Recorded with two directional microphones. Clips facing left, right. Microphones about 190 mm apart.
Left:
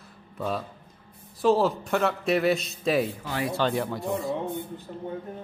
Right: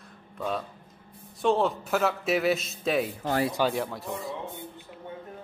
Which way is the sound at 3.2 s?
45° right (ahead or behind).